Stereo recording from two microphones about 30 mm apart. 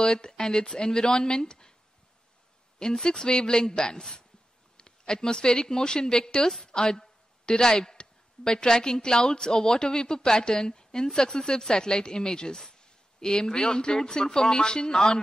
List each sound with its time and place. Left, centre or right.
0.0 s speech: left
2.8 s a woman's voice: left